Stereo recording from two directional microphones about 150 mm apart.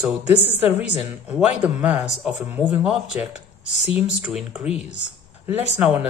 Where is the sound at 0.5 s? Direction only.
10° right (ahead or behind).